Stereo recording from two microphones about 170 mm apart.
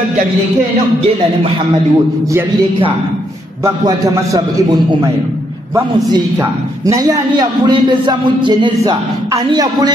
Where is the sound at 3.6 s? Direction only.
20° right (ahead or behind).